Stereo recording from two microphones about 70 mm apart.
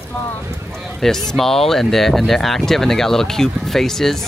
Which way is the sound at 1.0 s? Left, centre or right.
Centre.